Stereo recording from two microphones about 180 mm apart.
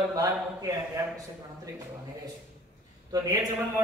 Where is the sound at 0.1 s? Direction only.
20° right (ahead or behind).